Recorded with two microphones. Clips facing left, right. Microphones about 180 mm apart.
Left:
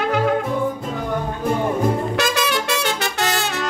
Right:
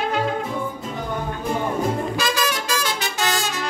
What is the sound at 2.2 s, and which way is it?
Music, 70° left (ahead or behind).